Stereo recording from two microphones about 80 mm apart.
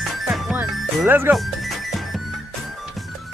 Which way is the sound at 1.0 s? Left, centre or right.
Right.